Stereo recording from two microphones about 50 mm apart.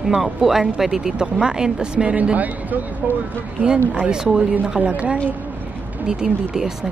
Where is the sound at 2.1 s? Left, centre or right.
Right.